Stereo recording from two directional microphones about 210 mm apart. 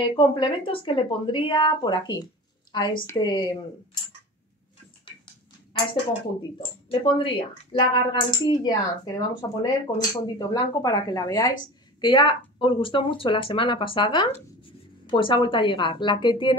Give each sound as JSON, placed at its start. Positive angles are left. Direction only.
{"t": 0.0, "sound": "speech", "side_deg": 25}
{"t": 5.0, "sound": "a sound", "side_deg": 20}
{"t": 6.6, "sound": "speech", "side_deg": 20}